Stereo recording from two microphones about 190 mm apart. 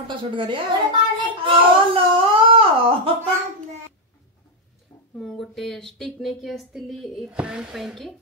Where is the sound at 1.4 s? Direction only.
25° right (ahead or behind).